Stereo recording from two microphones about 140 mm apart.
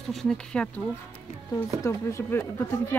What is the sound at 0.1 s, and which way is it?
Speech, 5° left (ahead or behind).